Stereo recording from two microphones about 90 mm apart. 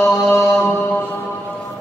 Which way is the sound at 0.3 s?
30° left (ahead or behind).